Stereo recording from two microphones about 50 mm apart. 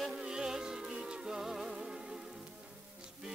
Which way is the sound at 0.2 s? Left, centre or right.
Centre.